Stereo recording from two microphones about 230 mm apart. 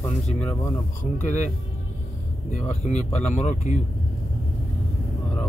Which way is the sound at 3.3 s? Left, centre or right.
Left.